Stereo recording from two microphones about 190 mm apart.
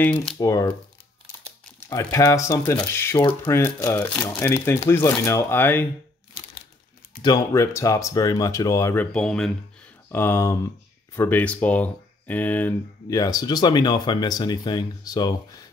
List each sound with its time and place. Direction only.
0.0 s speech: 5° left (ahead or behind)
0.4 s speech: 15° left (ahead or behind)
1.9 s speech: 15° left (ahead or behind)
7.2 s speech: 20° left (ahead or behind)